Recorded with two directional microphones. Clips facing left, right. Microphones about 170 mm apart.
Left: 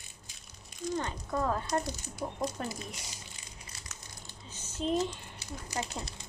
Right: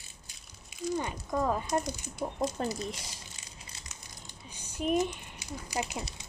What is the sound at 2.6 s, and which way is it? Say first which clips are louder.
Speech: right 5 dB; 25° right (ahead or behind).